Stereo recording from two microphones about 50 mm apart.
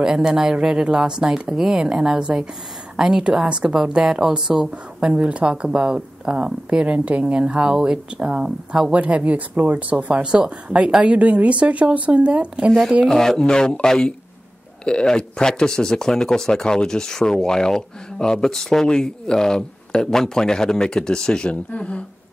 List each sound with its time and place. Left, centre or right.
0.0 s a woman's voice: centre
13.0 s speech: centre